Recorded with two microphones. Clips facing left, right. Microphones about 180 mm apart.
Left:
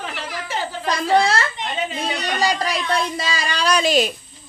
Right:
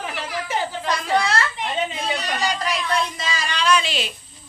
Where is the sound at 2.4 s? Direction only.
35° left (ahead or behind).